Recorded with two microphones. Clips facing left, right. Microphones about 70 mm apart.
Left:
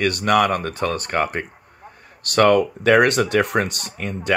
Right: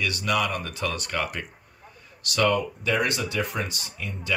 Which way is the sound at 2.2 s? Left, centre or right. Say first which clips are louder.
Left 8 dB; left.